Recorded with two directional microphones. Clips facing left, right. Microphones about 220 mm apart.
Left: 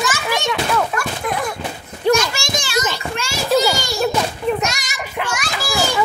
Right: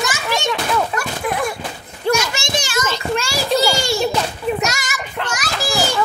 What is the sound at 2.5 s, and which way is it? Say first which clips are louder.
Children playing: right 1 dB; 40° right (ahead or behind).